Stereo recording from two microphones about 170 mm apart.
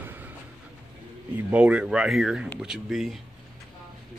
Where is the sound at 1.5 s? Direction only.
5° right (ahead or behind).